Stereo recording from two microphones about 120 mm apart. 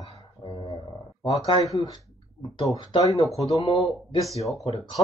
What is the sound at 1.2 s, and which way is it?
Speech, 30° left (ahead or behind).